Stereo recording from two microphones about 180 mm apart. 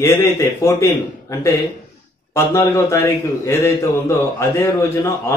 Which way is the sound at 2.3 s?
15° left (ahead or behind).